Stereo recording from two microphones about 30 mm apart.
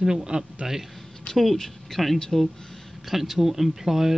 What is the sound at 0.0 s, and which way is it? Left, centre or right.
Speech, right.